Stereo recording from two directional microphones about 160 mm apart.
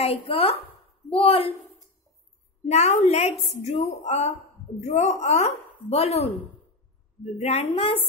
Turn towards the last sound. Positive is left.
turn(degrees=40)  # may be behind; listen again after turning